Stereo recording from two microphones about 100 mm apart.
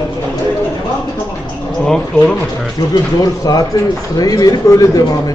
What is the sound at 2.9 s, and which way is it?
Speech, 40° left (ahead or behind).